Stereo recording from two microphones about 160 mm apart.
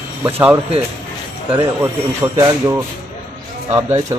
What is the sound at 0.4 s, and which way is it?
Speech, 10° right (ahead or behind).